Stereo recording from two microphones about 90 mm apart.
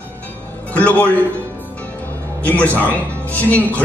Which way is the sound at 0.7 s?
15° left (ahead or behind).